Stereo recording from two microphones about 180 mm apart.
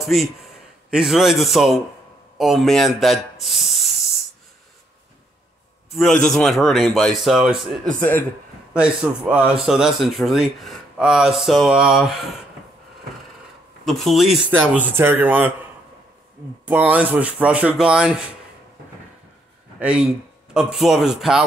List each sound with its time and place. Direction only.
0.0 s a man's voice: centre (ahead or behind)
5.9 s a man's voice: centre (ahead or behind)
8.0 s a man's voice: 10° left (ahead or behind)
8.7 s a man's voice: 5° right (ahead or behind)
13.8 s a man's voice: centre (ahead or behind)
16.6 s speech: 10° right (ahead or behind)
19.8 s a man's voice: 5° right (ahead or behind)